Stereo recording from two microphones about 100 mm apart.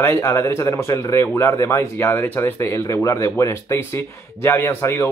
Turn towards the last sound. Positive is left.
turn(degrees=25)  # may be behind; listen again after turning